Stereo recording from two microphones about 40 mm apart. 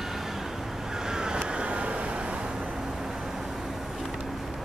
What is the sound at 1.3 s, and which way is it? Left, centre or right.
Vehicle, right.